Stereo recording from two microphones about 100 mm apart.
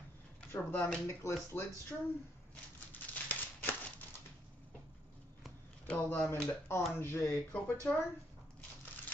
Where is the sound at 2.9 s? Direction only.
15° left (ahead or behind).